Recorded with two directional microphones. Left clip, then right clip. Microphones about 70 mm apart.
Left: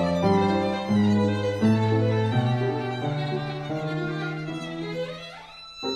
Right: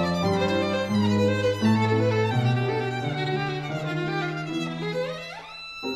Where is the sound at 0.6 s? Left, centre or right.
Left.